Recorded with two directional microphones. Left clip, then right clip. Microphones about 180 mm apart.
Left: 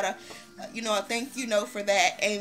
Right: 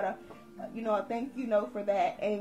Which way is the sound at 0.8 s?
15° left (ahead or behind).